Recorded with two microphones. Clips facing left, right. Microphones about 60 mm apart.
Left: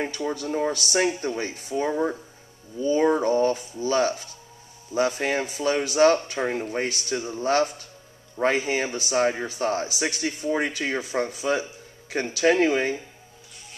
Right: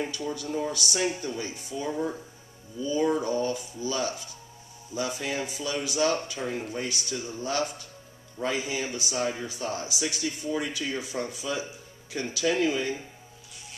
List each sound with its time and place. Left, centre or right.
0.0 s a man's voice: left